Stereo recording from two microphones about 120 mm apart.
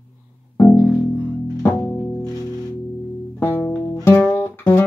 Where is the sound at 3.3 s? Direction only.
20° left (ahead or behind).